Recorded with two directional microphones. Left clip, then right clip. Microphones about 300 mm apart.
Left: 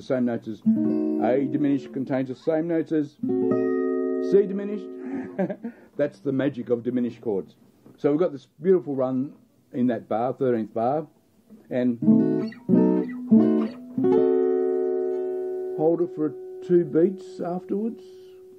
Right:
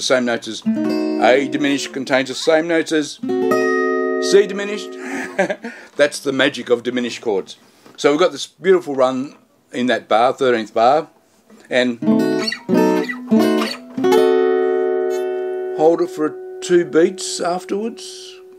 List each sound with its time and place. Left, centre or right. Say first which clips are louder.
0.0 s a man's voice: right 9 dB; centre
11.7 s guitar: right 6 dB; centre